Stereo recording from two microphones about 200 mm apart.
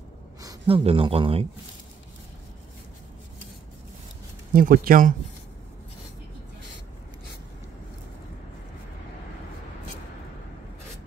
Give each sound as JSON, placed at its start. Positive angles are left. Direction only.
{"t": 0.4, "sound": "speech", "side_deg": -20}
{"t": 4.6, "sound": "speech", "side_deg": -45}